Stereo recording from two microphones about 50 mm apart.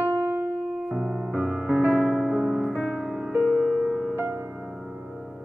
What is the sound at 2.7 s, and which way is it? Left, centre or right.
Music, centre.